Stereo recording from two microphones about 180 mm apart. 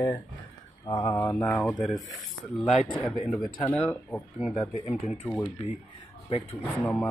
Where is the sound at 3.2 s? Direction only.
15° left (ahead or behind).